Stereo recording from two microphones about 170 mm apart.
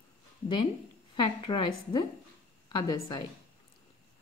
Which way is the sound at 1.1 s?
30° left (ahead or behind).